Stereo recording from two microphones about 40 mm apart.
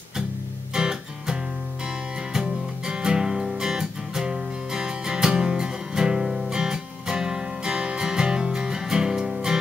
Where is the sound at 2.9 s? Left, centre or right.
Right.